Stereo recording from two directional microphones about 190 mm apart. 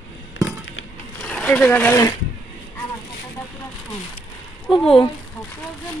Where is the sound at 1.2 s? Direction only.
5° left (ahead or behind).